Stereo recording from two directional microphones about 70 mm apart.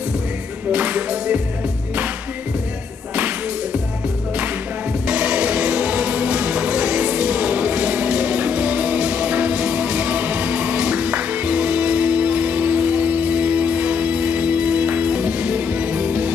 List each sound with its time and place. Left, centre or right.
0.7 s music: centre
5.0 s music: centre